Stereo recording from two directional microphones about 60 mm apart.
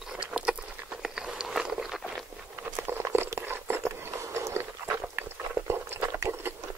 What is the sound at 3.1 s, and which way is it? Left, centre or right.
Biting, right.